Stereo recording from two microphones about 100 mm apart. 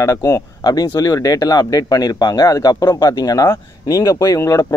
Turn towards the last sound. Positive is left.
turn(degrees=25)  # may be behind; listen again after turning